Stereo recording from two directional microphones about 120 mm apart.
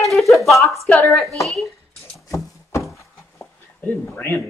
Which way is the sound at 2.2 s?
25° left (ahead or behind).